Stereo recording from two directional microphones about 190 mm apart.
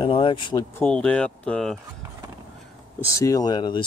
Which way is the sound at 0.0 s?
25° left (ahead or behind).